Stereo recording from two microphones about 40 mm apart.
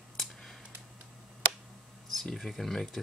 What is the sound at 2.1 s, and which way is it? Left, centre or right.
Speech, centre.